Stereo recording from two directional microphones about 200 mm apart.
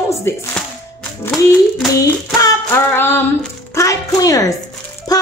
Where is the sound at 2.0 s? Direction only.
10° left (ahead or behind).